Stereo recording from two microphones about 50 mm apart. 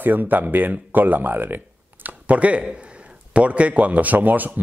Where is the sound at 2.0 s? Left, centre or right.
Right.